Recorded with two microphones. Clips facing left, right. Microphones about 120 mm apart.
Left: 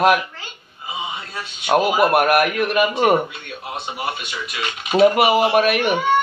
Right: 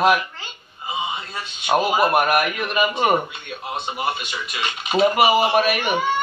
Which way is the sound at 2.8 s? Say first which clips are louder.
Left 2 dB; centre (ahead or behind).